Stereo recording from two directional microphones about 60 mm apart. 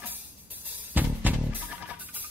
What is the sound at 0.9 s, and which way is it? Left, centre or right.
Music, right.